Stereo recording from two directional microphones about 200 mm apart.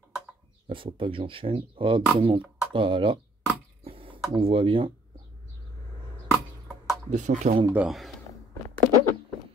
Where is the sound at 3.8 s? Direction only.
25° right (ahead or behind).